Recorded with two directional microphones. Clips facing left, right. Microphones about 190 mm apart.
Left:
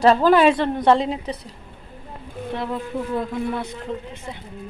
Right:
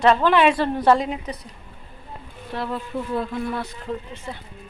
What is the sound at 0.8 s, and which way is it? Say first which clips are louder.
Speech: left 1 dB; 30° left (ahead or behind).